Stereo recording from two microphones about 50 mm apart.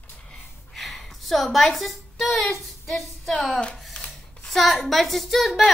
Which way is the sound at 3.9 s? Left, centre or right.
Centre.